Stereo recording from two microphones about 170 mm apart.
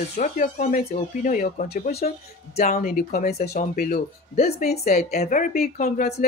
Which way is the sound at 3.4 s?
45° left (ahead or behind).